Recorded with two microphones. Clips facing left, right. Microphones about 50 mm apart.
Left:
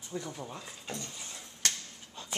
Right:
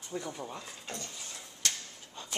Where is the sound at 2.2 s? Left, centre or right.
Centre.